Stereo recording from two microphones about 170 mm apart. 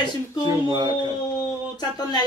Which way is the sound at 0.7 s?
25° right (ahead or behind).